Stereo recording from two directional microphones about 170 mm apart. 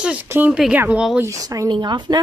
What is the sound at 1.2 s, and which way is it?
Speech, 20° right (ahead or behind).